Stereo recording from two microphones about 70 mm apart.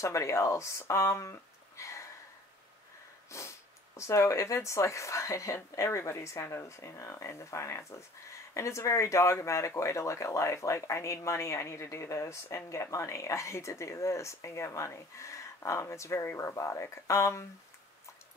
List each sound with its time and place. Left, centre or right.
0.0 s speech: left
3.3 s speech: left